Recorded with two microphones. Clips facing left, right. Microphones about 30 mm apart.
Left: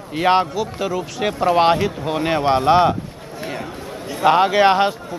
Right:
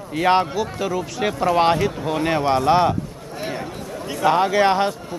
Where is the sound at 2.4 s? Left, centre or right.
Left.